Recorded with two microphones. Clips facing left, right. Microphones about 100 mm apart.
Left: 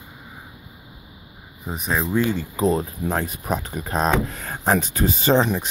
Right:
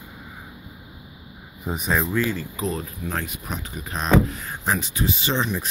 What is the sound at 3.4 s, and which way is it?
Speech, 45° left (ahead or behind).